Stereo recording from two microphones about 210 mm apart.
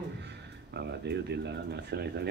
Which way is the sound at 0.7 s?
50° right (ahead or behind).